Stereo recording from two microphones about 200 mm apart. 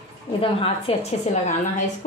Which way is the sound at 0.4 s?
30° left (ahead or behind).